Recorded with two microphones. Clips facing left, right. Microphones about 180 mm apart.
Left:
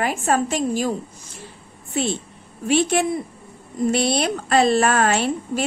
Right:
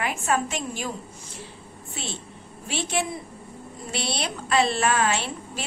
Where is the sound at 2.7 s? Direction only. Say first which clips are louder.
Left 9 dB; 50° left (ahead or behind).